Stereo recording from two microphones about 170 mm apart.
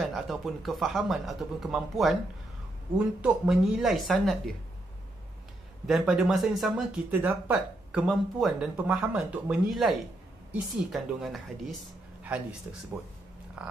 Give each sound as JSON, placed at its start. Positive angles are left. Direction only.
{"t": 0.0, "sound": "speech", "side_deg": 0}
{"t": 3.2, "sound": "speech", "side_deg": -5}
{"t": 5.9, "sound": "speech", "side_deg": 0}
{"t": 13.6, "sound": "a sound", "side_deg": -5}